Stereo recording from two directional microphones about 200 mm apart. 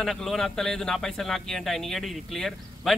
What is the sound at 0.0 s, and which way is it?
A man's voice, centre (ahead or behind).